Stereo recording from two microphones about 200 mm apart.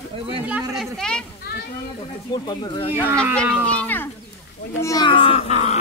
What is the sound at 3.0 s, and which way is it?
Speech, 10° right (ahead or behind).